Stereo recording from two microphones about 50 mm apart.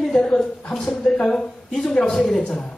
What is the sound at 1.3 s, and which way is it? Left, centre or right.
A woman's voice, centre.